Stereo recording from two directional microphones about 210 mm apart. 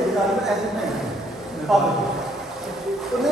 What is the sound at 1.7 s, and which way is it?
Speech, centre (ahead or behind).